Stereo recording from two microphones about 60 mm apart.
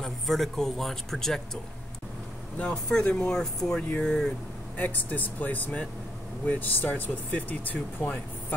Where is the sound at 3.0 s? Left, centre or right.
Centre.